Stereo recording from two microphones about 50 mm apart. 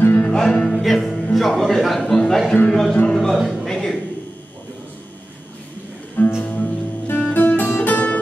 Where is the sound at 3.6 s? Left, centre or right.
Centre.